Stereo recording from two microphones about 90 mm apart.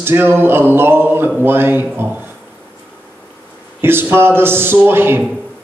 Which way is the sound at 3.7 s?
25° right (ahead or behind).